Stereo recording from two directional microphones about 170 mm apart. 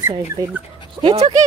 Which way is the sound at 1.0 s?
35° right (ahead or behind).